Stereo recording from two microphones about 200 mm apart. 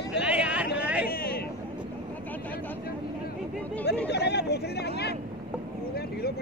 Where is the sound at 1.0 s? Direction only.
50° left (ahead or behind).